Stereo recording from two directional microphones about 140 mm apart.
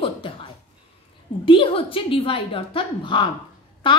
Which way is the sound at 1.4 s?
40° left (ahead or behind).